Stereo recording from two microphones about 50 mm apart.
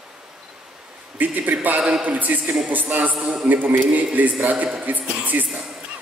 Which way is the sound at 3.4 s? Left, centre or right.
Right.